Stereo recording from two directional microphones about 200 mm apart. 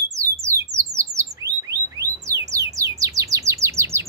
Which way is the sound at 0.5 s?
15° right (ahead or behind).